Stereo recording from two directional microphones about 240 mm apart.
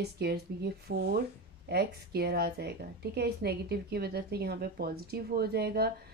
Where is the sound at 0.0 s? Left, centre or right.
Right.